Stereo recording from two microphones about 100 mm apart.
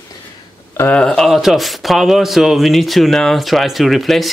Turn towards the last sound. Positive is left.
turn(degrees=0)  # may be behind; listen again after turning